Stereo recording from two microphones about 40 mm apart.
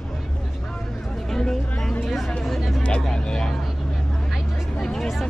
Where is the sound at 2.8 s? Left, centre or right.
Left.